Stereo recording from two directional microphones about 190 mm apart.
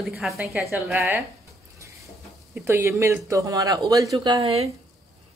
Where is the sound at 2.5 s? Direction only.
10° right (ahead or behind).